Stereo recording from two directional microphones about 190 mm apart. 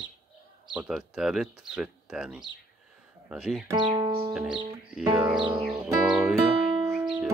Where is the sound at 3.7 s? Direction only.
25° right (ahead or behind).